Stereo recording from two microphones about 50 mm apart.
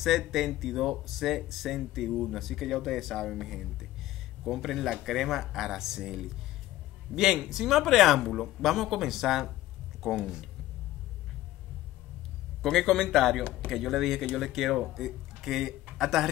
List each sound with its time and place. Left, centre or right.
0.3 s speech: centre
7.3 s speech: centre
12.6 s speech: centre